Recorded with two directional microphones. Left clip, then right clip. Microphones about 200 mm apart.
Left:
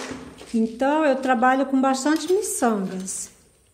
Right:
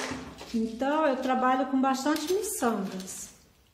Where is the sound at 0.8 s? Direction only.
35° left (ahead or behind).